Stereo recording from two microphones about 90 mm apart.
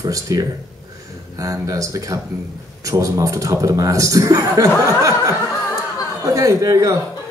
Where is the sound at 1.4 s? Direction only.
40° right (ahead or behind).